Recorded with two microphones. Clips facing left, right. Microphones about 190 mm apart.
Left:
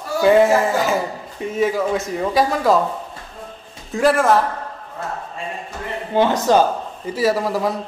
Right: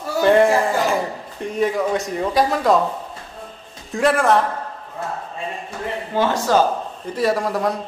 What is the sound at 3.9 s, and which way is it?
Speech, centre (ahead or behind).